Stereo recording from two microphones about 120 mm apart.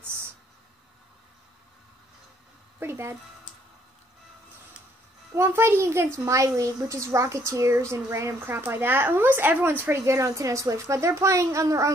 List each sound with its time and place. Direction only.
2.8 s speech: 20° right (ahead or behind)
5.3 s speech: 20° right (ahead or behind)